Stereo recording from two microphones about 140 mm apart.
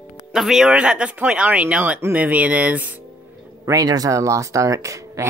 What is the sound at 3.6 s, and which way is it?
Speech, 25° right (ahead or behind).